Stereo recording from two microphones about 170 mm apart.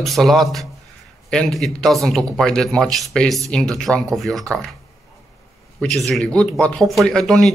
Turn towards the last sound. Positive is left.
turn(degrees=0)  # may be behind; listen again after turning